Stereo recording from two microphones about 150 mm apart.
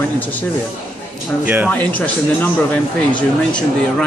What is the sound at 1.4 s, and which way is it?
Speech, 10° right (ahead or behind).